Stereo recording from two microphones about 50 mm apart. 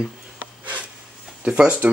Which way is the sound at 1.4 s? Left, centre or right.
Right.